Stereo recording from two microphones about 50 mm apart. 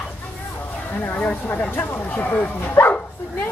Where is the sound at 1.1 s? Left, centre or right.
Left.